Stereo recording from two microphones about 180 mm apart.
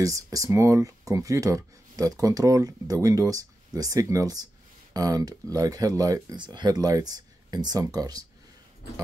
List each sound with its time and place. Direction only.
0.0 s speech: 20° right (ahead or behind)